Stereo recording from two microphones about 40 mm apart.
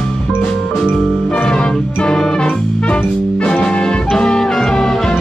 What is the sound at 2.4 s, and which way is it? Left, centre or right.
Music, left.